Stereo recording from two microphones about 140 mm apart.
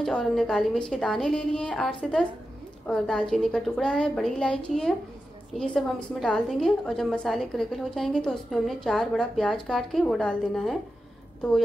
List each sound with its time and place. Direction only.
0.0 s a woman's voice: centre (ahead or behind)